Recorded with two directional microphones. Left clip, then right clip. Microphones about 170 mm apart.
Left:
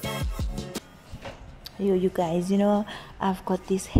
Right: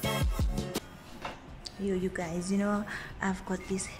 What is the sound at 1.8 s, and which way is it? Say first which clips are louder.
A woman's voice: left 9 dB; 20° left (ahead or behind).